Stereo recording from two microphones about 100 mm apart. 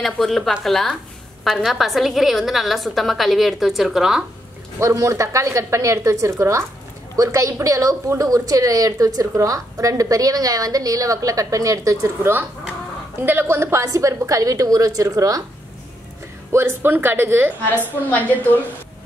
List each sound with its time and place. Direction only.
0.0 s a woman's voice: centre (ahead or behind)
4.7 s a woman's voice: 30° right (ahead or behind)
16.5 s speech: 20° right (ahead or behind)